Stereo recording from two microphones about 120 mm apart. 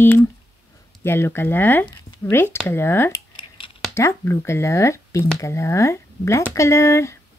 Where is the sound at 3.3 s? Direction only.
45° left (ahead or behind).